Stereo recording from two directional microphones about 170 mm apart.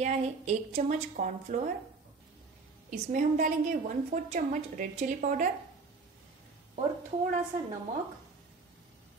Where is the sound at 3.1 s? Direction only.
50° right (ahead or behind).